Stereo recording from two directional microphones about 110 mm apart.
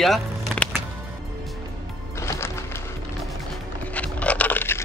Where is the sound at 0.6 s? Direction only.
10° left (ahead or behind).